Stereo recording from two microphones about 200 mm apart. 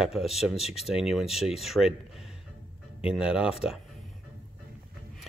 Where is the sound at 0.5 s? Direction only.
30° left (ahead or behind).